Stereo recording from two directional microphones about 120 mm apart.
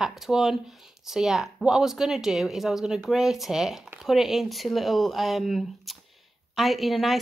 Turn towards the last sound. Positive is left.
turn(degrees=0)  # may be behind; listen again after turning